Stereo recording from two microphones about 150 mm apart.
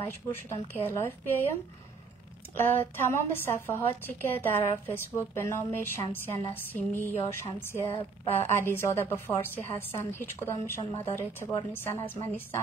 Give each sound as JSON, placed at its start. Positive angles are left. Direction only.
{"t": 0.0, "sound": "a woman's voice", "side_deg": 15}